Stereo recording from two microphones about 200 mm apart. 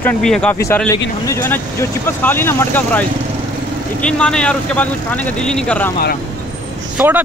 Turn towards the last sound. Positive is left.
turn(degrees=-10)  # may be behind; listen again after turning